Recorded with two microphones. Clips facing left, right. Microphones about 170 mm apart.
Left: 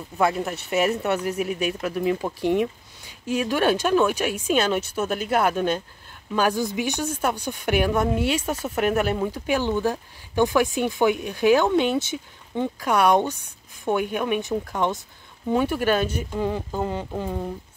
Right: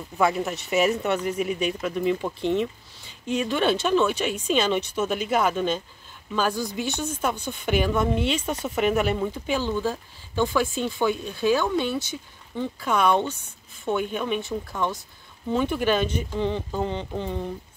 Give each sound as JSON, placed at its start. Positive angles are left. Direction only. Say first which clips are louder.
{"t": 0.2, "sound": "speech", "louder": "even", "side_deg": 0}
{"t": 15.5, "sound": "speech", "louder": "left 1 dB", "side_deg": 5}